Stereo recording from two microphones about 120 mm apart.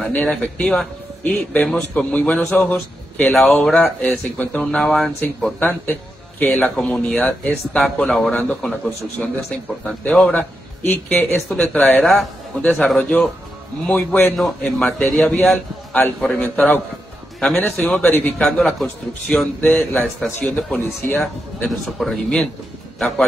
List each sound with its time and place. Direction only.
0.0 s a man's voice: 10° left (ahead or behind)
15.4 s a man's voice: centre (ahead or behind)
16.4 s a man's voice: 15° left (ahead or behind)
18.5 s a man's voice: centre (ahead or behind)
20.8 s speech: 20° left (ahead or behind)
21.6 s a man's voice: centre (ahead or behind)